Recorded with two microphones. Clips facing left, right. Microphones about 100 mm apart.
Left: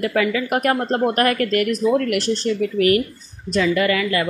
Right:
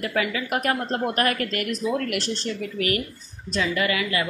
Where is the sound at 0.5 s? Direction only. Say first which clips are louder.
Left 3 dB; 45° left (ahead or behind).